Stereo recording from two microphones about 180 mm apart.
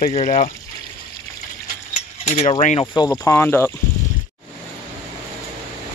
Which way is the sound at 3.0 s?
20° left (ahead or behind).